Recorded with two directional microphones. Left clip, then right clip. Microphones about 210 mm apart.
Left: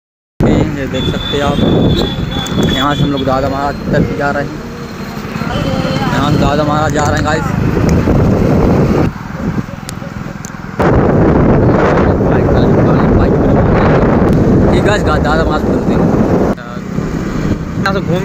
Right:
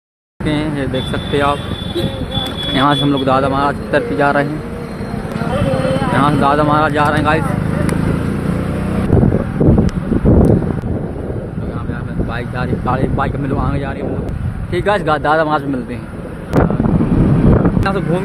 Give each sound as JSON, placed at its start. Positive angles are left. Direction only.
{"t": 2.8, "sound": "speech", "side_deg": -15}
{"t": 6.2, "sound": "speech", "side_deg": -5}
{"t": 14.7, "sound": "speech", "side_deg": 5}